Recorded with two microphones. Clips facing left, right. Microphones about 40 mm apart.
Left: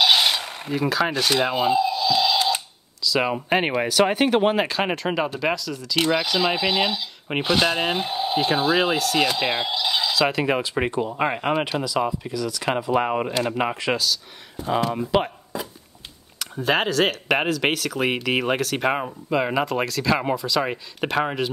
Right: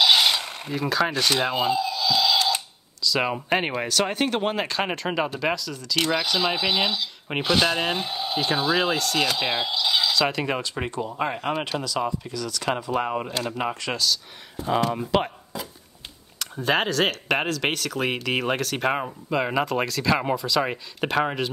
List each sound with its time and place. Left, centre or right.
0.0 s speech: centre
1.7 s a sound: left
3.0 s speech: centre; by 13.9 s left
14.6 s speech: centre
16.3 s speech: centre